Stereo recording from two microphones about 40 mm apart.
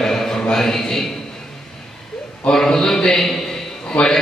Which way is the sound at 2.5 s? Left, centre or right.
Centre.